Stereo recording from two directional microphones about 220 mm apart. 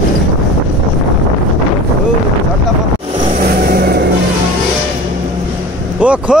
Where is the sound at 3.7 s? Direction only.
45° right (ahead or behind).